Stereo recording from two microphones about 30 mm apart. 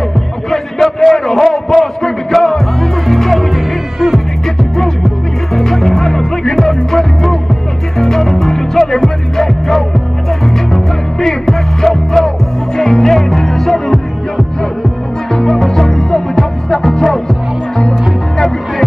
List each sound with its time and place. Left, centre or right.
0.5 s a sound: centre
2.0 s music: centre
5.0 s music: centre
15.3 s music: centre